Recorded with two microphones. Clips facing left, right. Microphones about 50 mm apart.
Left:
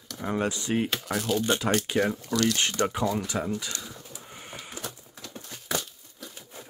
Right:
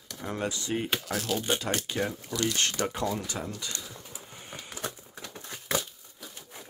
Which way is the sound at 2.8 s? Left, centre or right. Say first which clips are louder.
Left 3 dB; centre.